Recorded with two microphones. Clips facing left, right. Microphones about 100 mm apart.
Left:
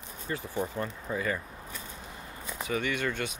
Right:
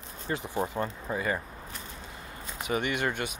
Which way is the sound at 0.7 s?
15° right (ahead or behind).